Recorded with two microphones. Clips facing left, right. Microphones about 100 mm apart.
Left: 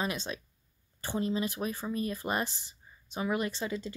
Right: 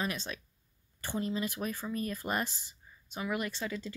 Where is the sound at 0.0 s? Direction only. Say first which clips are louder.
Left 2 dB; 20° left (ahead or behind).